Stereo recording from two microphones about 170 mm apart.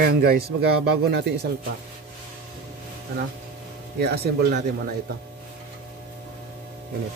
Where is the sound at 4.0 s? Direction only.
75° right (ahead or behind).